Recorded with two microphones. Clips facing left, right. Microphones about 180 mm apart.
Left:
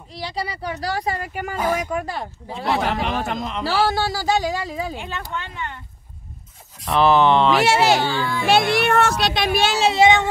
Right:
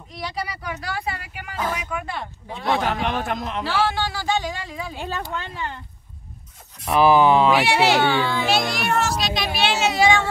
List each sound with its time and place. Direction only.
0.1 s speech: 30° left (ahead or behind)
2.5 s speech: centre (ahead or behind)
3.6 s speech: 40° left (ahead or behind)
4.9 s speech: 35° right (ahead or behind)
6.9 s speech: 10° right (ahead or behind)
7.6 s speech: 45° left (ahead or behind)
8.0 s a child's voice: 65° right (ahead or behind)
8.5 s speech: 60° left (ahead or behind)
9.8 s speech: 25° left (ahead or behind)